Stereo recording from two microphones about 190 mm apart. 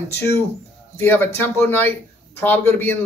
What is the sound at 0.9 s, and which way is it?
Speech, 10° left (ahead or behind).